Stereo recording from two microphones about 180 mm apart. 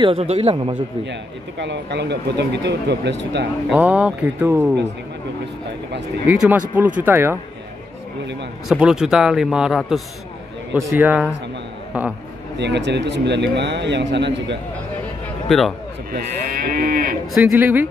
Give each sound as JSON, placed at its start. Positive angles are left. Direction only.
{"t": 0.0, "sound": "speech", "side_deg": -30}
{"t": 1.6, "sound": "a man's voice", "side_deg": -80}
{"t": 3.7, "sound": "speech", "side_deg": -5}
{"t": 6.2, "sound": "speech", "side_deg": -5}
{"t": 8.6, "sound": "speech", "side_deg": -5}
{"t": 10.7, "sound": "speech", "side_deg": -15}
{"t": 12.5, "sound": "a man's voice", "side_deg": -75}
{"t": 15.4, "sound": "a man's voice", "side_deg": 0}
{"t": 16.1, "sound": "moo", "side_deg": -50}
{"t": 17.3, "sound": "speech", "side_deg": -5}